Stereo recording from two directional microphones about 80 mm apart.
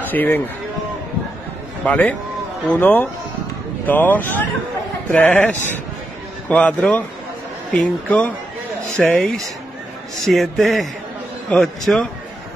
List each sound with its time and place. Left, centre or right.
0.0 s speech: left
1.9 s speech: centre
8.9 s speech: centre